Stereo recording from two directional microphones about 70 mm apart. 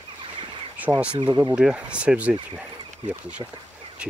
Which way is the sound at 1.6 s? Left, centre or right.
Centre.